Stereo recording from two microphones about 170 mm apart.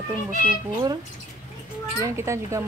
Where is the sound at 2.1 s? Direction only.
15° right (ahead or behind).